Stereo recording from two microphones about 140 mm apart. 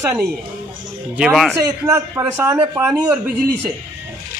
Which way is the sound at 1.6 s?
20° right (ahead or behind).